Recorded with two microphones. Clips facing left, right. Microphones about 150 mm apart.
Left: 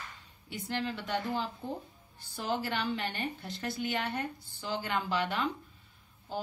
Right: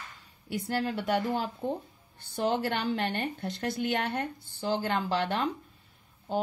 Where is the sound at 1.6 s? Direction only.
65° right (ahead or behind).